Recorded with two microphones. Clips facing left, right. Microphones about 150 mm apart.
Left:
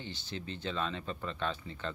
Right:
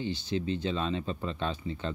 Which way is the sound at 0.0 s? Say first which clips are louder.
Right 11 dB; 15° right (ahead or behind).